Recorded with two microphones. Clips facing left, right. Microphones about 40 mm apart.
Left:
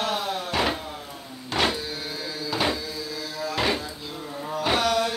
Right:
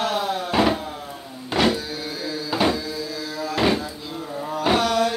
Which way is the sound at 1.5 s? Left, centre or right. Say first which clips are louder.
Right 4 dB; centre.